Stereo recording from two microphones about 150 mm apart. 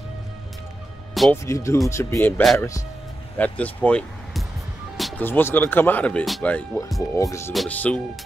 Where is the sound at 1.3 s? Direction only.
20° left (ahead or behind).